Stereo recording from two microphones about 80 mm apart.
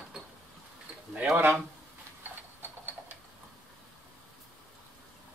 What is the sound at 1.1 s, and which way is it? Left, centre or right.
Speech, centre.